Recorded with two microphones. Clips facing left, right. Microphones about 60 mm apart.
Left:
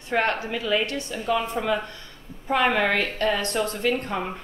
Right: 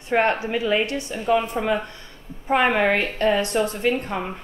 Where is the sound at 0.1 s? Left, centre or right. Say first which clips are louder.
Right 4 dB; right.